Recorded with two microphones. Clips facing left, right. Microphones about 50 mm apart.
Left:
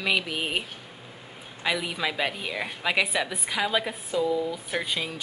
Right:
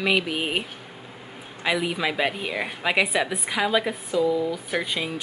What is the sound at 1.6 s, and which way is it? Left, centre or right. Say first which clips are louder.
A woman's voice: right 3 dB; centre.